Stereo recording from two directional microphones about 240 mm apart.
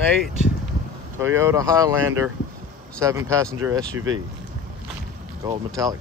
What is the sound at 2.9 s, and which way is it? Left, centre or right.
Speech, centre.